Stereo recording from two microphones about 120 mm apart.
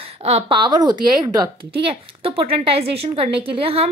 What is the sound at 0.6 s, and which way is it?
Speech, 35° right (ahead or behind).